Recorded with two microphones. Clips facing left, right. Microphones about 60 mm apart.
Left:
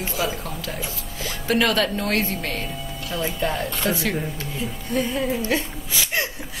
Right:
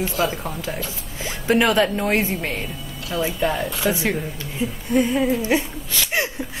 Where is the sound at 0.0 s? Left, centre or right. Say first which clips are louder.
Right 4 dB; centre.